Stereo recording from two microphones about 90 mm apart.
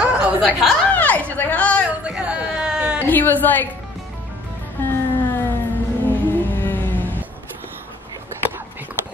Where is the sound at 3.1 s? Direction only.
20° left (ahead or behind).